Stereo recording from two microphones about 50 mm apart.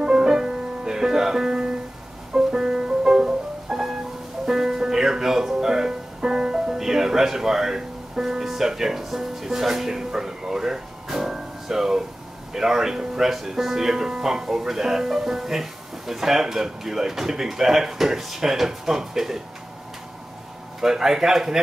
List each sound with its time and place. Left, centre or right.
0.0 s music: centre
12.5 s speech: centre
20.8 s speech: centre